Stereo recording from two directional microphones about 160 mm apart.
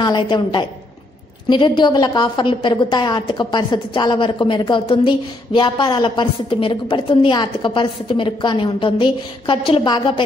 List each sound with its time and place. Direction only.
0.0 s a woman's voice: 30° left (ahead or behind)